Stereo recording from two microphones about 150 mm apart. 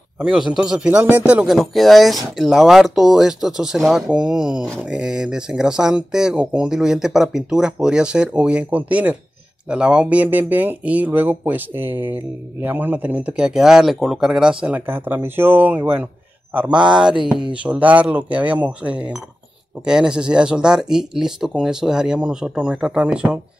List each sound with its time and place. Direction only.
0.2 s speech: 5° right (ahead or behind)
17.2 s a sound: 30° right (ahead or behind)
17.6 s speech: 10° right (ahead or behind)